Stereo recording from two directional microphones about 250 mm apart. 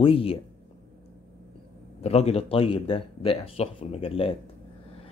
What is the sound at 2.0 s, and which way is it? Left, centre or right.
Speech, left.